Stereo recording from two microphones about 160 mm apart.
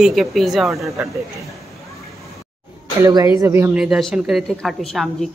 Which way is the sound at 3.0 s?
25° right (ahead or behind).